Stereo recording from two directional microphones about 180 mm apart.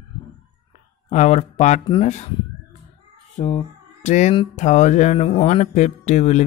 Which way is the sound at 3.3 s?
40° left (ahead or behind).